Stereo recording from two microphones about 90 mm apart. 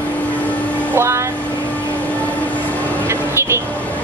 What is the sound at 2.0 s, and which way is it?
Vehicle, 15° left (ahead or behind).